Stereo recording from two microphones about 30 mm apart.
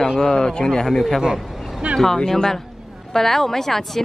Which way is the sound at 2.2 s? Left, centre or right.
Centre.